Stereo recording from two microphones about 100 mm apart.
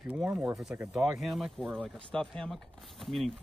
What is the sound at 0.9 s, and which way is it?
Speech, 5° right (ahead or behind).